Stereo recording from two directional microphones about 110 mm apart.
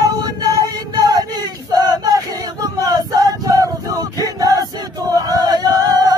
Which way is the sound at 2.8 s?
35° right (ahead or behind).